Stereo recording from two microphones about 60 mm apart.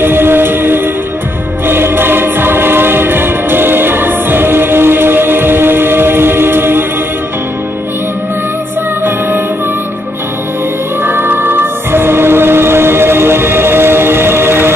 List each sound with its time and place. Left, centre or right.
0.0 s music: right
1.7 s choir: right
11.1 s music: right